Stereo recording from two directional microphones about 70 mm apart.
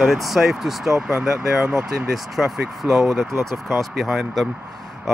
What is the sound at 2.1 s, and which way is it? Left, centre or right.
Speech, centre.